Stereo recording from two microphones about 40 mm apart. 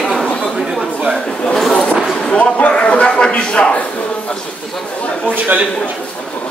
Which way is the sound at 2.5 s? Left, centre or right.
Left.